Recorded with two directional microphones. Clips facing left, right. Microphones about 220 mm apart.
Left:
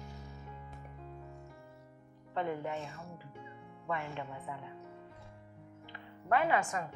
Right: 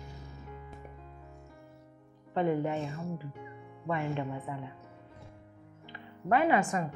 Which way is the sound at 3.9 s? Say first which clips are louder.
Right 6 dB; 15° right (ahead or behind).